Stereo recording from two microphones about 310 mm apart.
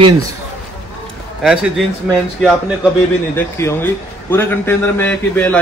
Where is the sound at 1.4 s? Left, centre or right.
Centre.